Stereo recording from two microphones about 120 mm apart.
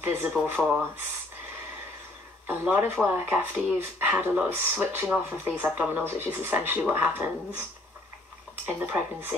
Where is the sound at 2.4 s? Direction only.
15° right (ahead or behind).